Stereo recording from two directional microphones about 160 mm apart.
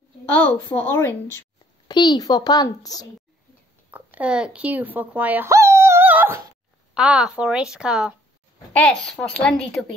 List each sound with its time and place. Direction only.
0.3 s a woman's voice: 15° left (ahead or behind)
1.9 s a child's voice: 25° left (ahead or behind)
3.9 s a woman's voice: 10° right (ahead or behind)
8.7 s a woman's voice: 5° left (ahead or behind)